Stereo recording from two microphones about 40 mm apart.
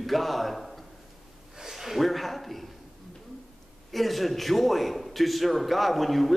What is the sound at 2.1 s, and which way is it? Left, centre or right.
Speech, centre.